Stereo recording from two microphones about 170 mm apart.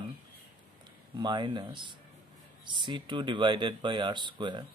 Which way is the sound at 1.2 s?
25° right (ahead or behind).